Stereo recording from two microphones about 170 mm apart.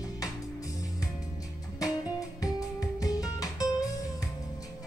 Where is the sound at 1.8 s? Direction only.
20° left (ahead or behind).